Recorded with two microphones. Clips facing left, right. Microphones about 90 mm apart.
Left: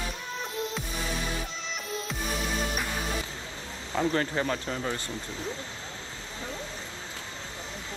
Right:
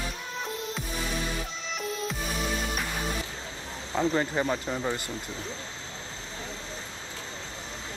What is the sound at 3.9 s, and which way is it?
Speech, 15° right (ahead or behind).